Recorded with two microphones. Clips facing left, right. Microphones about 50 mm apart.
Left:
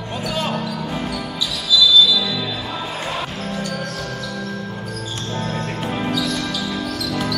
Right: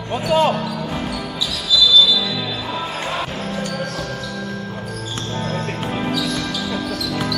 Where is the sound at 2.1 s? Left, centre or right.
Centre.